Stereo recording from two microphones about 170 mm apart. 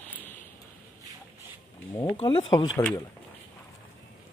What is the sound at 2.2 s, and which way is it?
Speech, 30° left (ahead or behind).